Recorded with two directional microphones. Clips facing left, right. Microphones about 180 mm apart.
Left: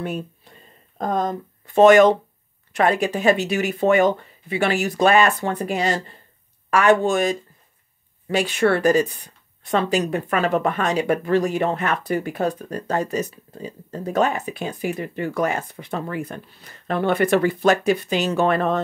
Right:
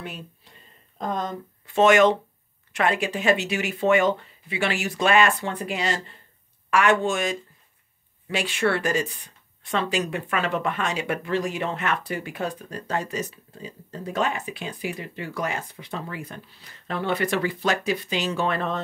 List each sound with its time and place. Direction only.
0.9 s speech: 45° left (ahead or behind)